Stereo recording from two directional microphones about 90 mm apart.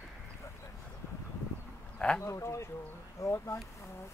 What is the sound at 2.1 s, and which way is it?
Speech, 35° left (ahead or behind).